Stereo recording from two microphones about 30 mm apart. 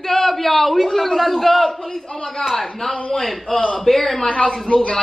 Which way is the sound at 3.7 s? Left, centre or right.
Centre.